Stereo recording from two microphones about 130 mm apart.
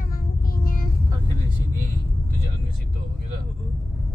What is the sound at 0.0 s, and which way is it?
Child singing, 90° left.